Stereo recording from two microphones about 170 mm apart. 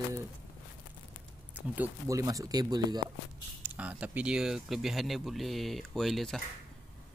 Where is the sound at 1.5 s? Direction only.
15° right (ahead or behind).